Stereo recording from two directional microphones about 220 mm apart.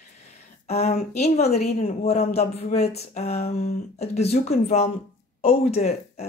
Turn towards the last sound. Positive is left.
turn(degrees=30)  # may be behind; listen again after turning